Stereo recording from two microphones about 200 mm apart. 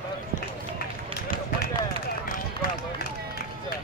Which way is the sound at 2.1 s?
45° left (ahead or behind).